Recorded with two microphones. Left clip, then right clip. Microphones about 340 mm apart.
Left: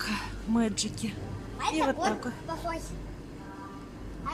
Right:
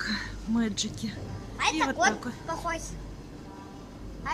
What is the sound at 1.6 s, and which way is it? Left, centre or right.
Speech, right.